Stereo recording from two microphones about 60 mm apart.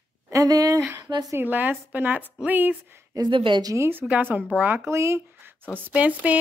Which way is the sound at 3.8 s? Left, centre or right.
Right.